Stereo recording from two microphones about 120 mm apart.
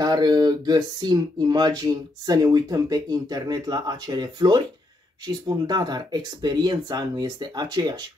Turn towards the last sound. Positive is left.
turn(degrees=-35)  # may be behind; listen again after turning